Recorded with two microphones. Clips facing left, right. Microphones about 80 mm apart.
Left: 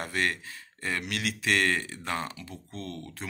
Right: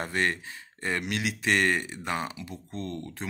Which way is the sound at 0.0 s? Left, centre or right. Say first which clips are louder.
Right 2 dB; right.